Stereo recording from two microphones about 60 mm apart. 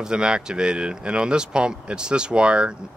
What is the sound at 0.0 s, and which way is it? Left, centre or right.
Speech, centre.